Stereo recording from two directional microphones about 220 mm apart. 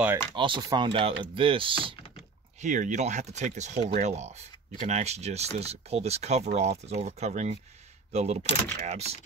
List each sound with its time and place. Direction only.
0.3 s speech: 20° right (ahead or behind)
2.6 s speech: 35° right (ahead or behind)